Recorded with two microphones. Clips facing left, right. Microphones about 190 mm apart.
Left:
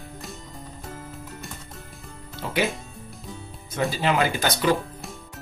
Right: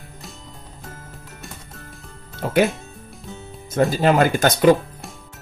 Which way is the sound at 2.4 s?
50° right (ahead or behind).